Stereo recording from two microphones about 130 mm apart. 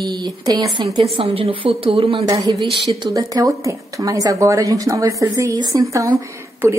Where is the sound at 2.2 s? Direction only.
30° right (ahead or behind).